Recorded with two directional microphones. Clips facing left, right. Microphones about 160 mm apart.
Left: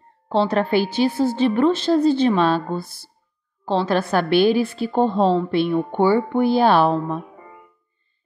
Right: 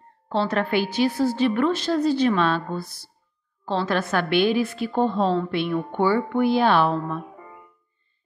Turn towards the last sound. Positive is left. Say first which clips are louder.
# left 3 dB
turn(degrees=35)  # may be behind; listen again after turning